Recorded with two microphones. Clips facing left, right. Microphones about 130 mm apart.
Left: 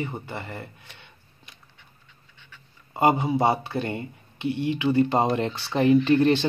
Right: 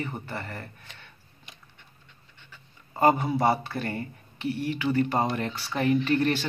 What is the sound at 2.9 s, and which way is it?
Speech, 15° left (ahead or behind).